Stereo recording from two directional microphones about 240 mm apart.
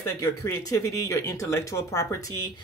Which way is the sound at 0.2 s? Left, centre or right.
Centre.